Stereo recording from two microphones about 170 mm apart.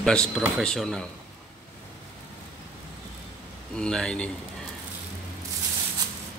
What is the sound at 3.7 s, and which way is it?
Speech, 5° left (ahead or behind).